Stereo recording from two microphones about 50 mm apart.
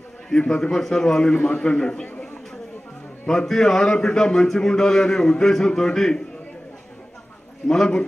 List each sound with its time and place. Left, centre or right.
0.3 s a man's voice: centre
1.5 s a man's voice: left
3.3 s a man's voice: centre
7.6 s a man's voice: centre